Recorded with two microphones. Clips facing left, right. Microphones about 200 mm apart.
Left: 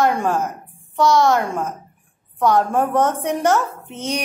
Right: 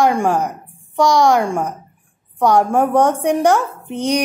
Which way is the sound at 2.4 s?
15° right (ahead or behind).